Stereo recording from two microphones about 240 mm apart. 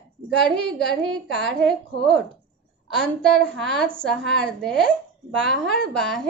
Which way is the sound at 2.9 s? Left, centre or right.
Centre.